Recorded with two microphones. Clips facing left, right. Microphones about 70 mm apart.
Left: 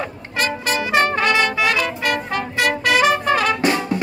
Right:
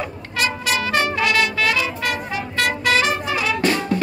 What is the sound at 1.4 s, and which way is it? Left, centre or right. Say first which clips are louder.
Music: left 1 dB; left.